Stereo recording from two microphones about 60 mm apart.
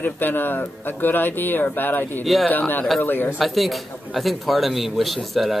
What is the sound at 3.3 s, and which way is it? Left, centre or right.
Speech, centre.